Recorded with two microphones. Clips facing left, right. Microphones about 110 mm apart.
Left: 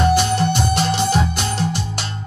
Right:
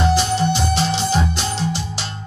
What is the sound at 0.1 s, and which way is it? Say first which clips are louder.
Music: left 1 dB; 55° left (ahead or behind).